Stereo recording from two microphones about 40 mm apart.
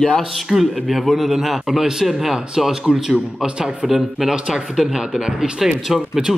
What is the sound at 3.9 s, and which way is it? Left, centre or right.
Speech, centre.